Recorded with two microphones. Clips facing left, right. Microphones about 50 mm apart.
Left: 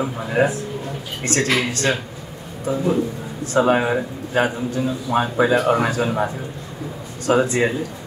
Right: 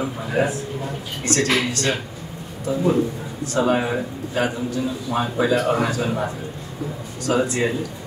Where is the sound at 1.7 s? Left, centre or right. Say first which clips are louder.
Left 2 dB; left.